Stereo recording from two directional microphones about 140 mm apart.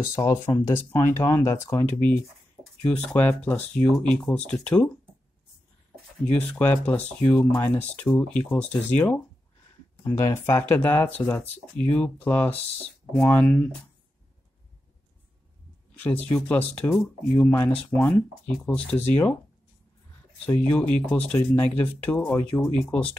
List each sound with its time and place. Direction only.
0.2 s speech: 25° left (ahead or behind); by 4.9 s 5° left (ahead or behind)
6.3 s speech: 10° left (ahead or behind)
16.3 s speech: 10° left (ahead or behind)
20.4 s speech: 10° left (ahead or behind)